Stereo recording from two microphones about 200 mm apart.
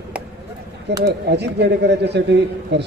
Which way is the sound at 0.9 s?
55° right (ahead or behind).